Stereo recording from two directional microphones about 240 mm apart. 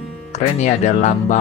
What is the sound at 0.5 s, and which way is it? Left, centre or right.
Speech, left.